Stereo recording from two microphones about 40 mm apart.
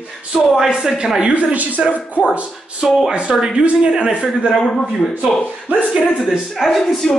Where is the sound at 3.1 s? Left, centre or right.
Right.